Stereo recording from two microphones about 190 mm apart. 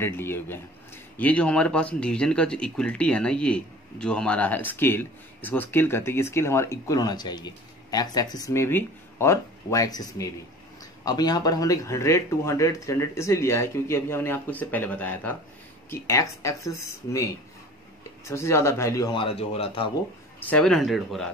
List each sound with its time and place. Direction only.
0.0 s a man's voice: 10° left (ahead or behind); by 19.9 s 30° left (ahead or behind)
20.4 s speech: 5° left (ahead or behind)